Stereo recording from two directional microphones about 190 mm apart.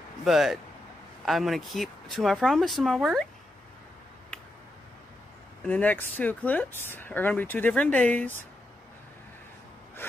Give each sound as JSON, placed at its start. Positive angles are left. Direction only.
{"t": 0.2, "sound": "speech", "side_deg": 0}
{"t": 5.7, "sound": "speech", "side_deg": 10}